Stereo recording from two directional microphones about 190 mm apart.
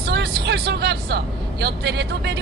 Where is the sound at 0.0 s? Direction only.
60° right (ahead or behind).